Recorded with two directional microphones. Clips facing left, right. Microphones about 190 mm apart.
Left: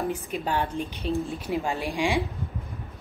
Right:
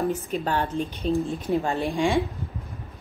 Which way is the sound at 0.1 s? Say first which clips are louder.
Right 2 dB; 10° left (ahead or behind).